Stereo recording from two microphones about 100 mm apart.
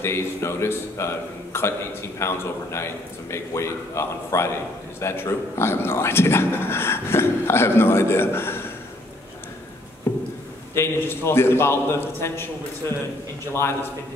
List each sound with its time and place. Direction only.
0.0 s a man's voice: 25° left (ahead or behind)
10.1 s a sound: 25° left (ahead or behind)
10.7 s a man's voice: 25° left (ahead or behind)
13.5 s a man's voice: 25° left (ahead or behind)